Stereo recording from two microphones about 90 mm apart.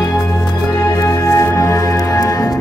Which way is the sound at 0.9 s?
35° left (ahead or behind).